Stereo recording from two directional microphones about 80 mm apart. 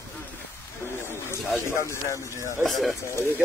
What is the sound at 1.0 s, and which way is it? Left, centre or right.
Speech, left.